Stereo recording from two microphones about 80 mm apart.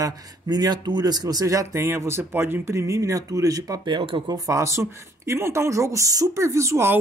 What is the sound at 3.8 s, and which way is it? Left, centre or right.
Speech, right.